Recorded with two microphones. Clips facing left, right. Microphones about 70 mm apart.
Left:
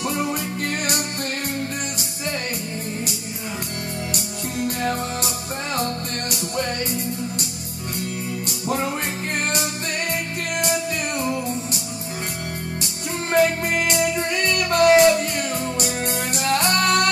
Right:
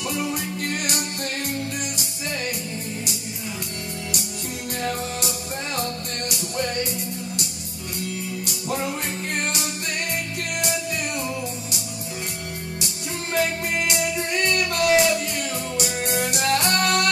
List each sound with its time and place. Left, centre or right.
0.1 s music: left
4.6 s music: left
6.3 s music: left
8.5 s music: left
10.6 s music: left
13.3 s music: left